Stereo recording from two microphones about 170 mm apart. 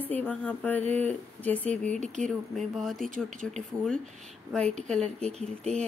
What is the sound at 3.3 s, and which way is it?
Speech, 45° right (ahead or behind).